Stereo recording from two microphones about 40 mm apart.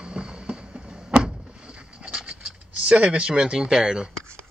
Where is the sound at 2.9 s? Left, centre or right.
Right.